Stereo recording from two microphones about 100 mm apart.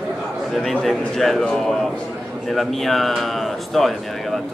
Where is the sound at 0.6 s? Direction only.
5° left (ahead or behind).